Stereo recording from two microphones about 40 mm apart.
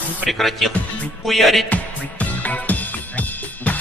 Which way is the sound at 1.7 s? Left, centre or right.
Left.